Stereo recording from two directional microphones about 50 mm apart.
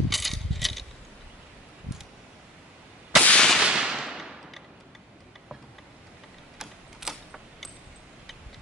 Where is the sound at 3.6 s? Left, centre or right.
Centre.